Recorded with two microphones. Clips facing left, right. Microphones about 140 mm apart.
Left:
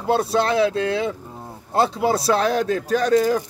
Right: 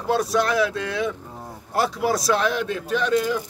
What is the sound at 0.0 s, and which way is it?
A man's voice, 30° left (ahead or behind).